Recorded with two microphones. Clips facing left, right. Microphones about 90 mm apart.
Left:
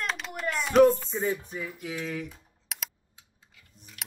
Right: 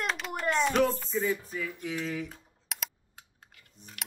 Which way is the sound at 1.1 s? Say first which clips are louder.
Even; 35° left (ahead or behind).